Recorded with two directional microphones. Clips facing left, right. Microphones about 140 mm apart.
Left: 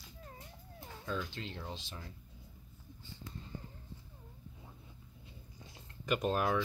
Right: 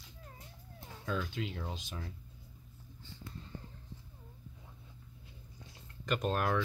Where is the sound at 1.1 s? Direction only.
5° right (ahead or behind).